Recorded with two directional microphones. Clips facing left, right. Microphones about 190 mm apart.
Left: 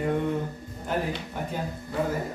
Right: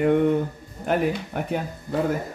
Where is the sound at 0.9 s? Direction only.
65° right (ahead or behind).